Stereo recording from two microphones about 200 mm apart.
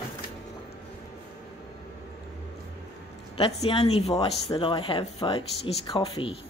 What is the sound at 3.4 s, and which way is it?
Speech, 30° left (ahead or behind).